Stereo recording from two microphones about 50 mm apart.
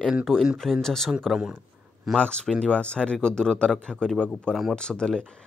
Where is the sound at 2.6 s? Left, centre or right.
Left.